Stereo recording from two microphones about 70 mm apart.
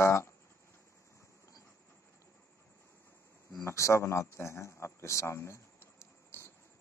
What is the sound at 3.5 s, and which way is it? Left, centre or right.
A man's voice, left.